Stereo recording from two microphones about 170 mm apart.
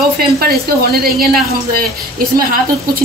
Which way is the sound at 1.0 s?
60° right (ahead or behind).